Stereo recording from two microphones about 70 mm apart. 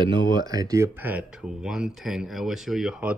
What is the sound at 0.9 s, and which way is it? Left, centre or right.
Speech, right.